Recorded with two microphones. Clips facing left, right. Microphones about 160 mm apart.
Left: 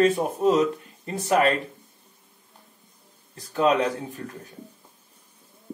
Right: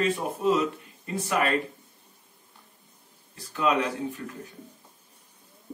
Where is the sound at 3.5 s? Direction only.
35° left (ahead or behind).